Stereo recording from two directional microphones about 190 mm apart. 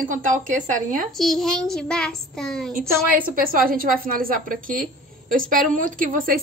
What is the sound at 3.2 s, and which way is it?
A woman's voice, 50° right (ahead or behind).